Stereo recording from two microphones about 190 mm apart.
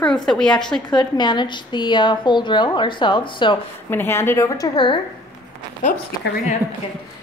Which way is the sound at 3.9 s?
10° left (ahead or behind).